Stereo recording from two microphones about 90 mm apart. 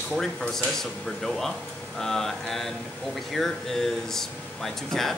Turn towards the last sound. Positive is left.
turn(degrees=5)  # may be behind; listen again after turning